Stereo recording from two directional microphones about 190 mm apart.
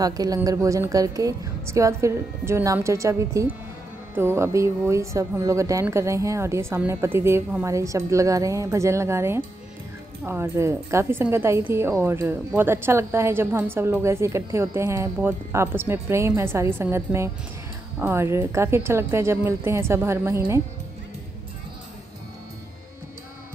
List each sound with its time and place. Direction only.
0.0 s speech: 20° right (ahead or behind)